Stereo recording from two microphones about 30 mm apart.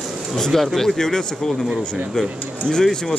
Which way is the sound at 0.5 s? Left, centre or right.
Centre.